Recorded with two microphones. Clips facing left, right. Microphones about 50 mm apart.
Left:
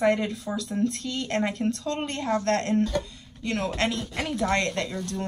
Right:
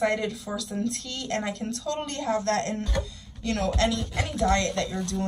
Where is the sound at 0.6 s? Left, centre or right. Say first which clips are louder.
Left 5 dB; left.